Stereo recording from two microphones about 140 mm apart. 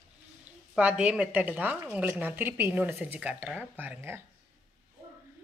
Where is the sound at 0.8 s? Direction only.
10° right (ahead or behind).